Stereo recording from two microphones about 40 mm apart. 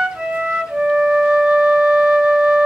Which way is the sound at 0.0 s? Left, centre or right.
Right.